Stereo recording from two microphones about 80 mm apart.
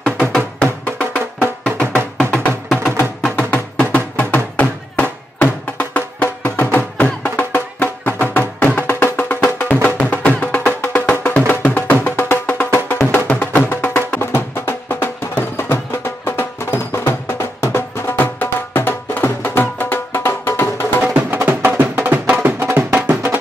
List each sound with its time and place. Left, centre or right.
0.0 s music: centre
14.2 s music: left
21.0 s music: centre